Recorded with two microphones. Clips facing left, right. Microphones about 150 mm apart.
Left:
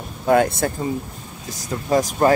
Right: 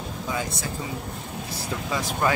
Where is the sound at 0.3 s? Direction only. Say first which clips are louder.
Left 15 dB; 60° left (ahead or behind).